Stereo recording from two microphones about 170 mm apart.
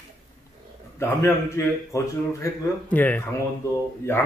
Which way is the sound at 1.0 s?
15° left (ahead or behind).